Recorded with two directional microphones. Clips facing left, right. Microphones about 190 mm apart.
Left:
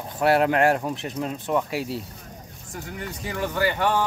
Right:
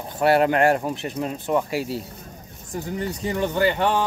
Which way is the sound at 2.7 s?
30° right (ahead or behind).